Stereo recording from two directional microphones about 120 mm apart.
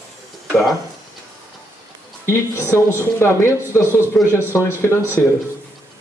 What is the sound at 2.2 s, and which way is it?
Speech, 20° left (ahead or behind).